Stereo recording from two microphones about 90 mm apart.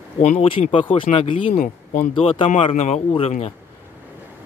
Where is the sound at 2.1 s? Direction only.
85° left.